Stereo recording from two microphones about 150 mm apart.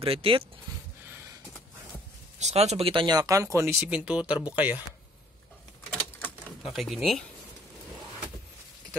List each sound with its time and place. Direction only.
0.0 s speech: 40° right (ahead or behind)
2.3 s speech: 50° right (ahead or behind); by 3.7 s 20° right (ahead or behind)
3.9 s speech: 10° right (ahead or behind)
5.9 s a sound: 15° left (ahead or behind)
6.6 s speech: centre (ahead or behind)